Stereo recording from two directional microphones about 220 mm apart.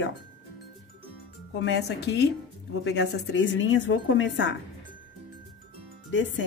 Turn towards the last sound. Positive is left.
turn(degrees=55)  # may be behind; listen again after turning